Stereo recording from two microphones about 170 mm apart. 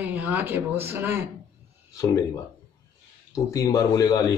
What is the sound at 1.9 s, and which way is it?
Speech, 20° left (ahead or behind).